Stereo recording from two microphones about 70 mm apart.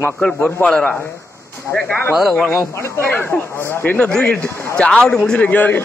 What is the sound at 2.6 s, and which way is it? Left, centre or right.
Speech, left.